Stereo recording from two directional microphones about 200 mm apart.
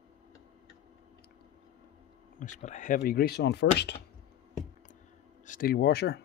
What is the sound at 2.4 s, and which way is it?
Speech, 35° left (ahead or behind).